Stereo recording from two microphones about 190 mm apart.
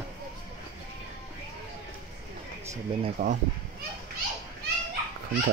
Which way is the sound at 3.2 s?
40° right (ahead or behind).